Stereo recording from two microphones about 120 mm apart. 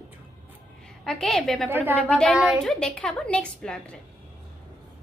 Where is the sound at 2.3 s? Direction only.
5° right (ahead or behind).